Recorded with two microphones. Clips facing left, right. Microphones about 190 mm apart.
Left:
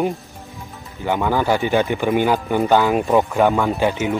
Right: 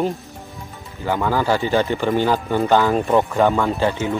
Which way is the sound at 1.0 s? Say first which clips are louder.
Left 1 dB; 15° left (ahead or behind).